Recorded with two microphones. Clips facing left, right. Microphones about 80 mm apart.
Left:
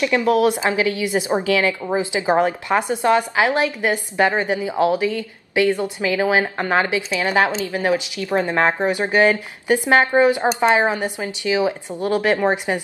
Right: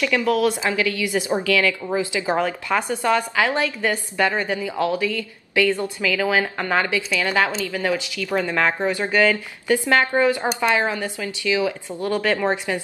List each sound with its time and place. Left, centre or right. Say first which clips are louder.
0.0 s a woman's voice: left 3 dB; left